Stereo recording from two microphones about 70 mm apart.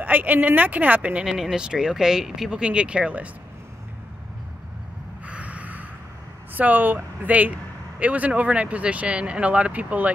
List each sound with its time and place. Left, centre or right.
0.0 s speech: right
1.2 s speech: centre
5.2 s a sound: centre
6.5 s speech: right